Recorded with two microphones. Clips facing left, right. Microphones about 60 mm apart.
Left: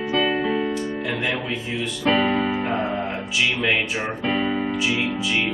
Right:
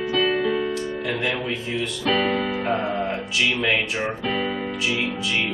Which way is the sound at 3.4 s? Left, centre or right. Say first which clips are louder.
Even; centre.